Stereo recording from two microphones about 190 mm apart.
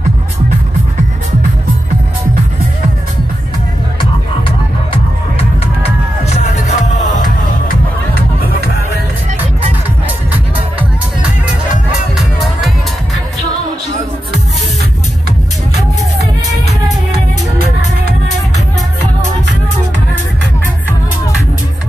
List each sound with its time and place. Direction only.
4.0 s music: 25° left (ahead or behind)
5.8 s music: 35° left (ahead or behind)
7.6 s music: 50° left (ahead or behind)
12.2 s music: centre (ahead or behind)